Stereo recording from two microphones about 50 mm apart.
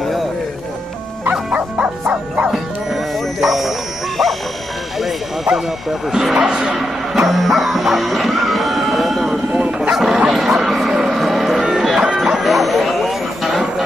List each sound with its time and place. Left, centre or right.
1.5 s music: right
2.5 s music: centre
4.2 s bow-wow: centre
5.0 s a sound: centre
6.1 s music: centre
9.5 s bow-wow: right
9.9 s bow-wow: centre
10.3 s music: centre